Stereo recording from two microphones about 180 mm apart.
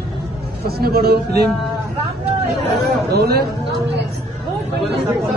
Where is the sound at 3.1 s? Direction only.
60° right (ahead or behind).